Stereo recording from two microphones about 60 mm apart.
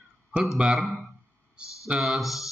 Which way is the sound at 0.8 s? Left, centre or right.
Centre.